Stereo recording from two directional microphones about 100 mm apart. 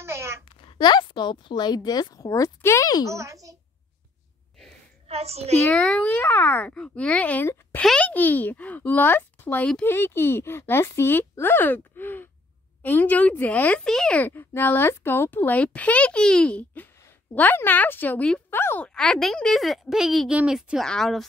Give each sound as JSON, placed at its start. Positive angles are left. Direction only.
{"t": 0.0, "sound": "a sound", "side_deg": -25}
{"t": 0.5, "sound": "a woman's voice", "side_deg": 60}
{"t": 3.1, "sound": "a child's voice", "side_deg": -30}
{"t": 5.0, "sound": "a child's voice", "side_deg": -90}
{"t": 5.7, "sound": "a child's voice", "side_deg": 10}
{"t": 18.9, "sound": "speech", "side_deg": 5}